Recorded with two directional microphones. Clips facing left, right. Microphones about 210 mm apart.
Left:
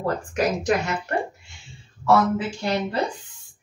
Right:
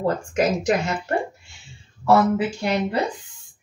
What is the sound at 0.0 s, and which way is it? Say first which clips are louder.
Speech: right 2 dB; 20° right (ahead or behind).